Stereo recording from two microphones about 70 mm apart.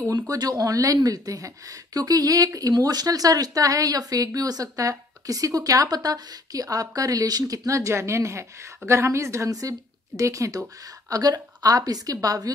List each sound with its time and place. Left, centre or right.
0.0 s speech: right
11.1 s speech: right